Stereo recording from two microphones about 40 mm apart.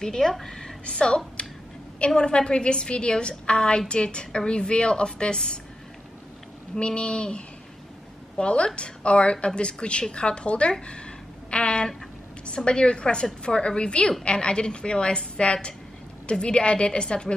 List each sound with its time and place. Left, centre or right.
0.0 s a woman's voice: centre
0.8 s a woman's voice: left
6.7 s a woman's voice: left